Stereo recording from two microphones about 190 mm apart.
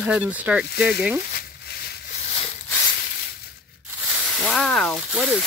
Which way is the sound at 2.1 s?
35° left (ahead or behind).